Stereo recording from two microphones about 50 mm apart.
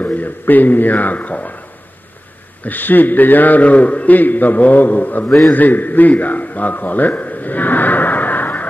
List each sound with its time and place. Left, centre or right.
0.0 s a man's voice: left
2.6 s a man's voice: left